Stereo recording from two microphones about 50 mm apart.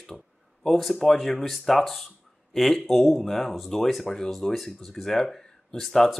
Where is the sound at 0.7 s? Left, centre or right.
Centre.